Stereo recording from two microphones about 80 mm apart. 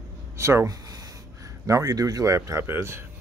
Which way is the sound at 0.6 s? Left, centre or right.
Right.